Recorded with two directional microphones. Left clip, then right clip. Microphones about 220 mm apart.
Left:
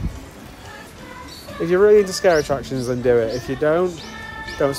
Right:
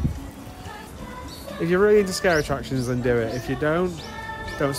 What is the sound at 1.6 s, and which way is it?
Speech, 5° right (ahead or behind).